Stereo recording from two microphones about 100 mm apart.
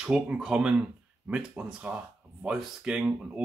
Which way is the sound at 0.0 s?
10° right (ahead or behind).